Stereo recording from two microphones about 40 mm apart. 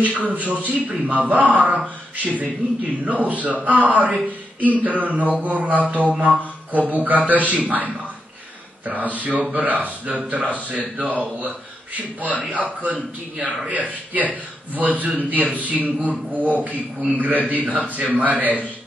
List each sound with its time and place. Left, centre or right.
0.0 s speech: right
4.6 s speech: left
4.8 s a man's voice: right